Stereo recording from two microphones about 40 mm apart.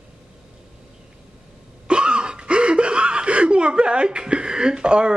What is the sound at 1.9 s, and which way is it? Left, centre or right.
Speech, right.